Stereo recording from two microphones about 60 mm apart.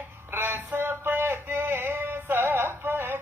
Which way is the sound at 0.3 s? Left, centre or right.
Right.